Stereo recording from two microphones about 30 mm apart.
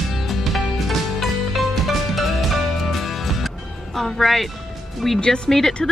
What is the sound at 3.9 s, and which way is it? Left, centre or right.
Speech, centre.